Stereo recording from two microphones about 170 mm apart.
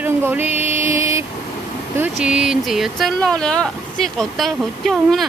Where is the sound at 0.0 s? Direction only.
10° right (ahead or behind).